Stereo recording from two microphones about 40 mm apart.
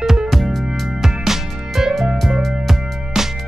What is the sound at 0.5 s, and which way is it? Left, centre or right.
Music, centre.